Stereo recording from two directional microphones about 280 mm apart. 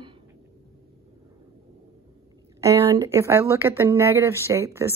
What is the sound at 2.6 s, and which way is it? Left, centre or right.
Speech, centre.